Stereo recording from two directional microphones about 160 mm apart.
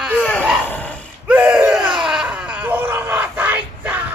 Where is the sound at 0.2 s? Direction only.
10° left (ahead or behind).